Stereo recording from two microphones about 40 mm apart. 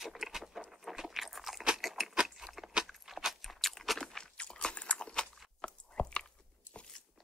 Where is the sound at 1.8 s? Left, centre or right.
Centre.